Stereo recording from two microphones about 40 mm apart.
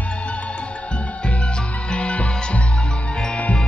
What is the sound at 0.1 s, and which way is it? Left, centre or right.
Music, left.